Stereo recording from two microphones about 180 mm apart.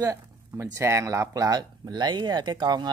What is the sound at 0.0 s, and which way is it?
Speech, 15° right (ahead or behind).